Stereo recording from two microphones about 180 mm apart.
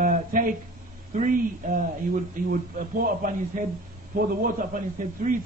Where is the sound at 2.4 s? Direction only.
50° right (ahead or behind).